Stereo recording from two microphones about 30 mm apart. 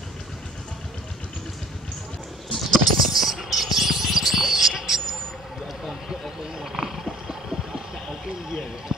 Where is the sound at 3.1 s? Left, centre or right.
Centre.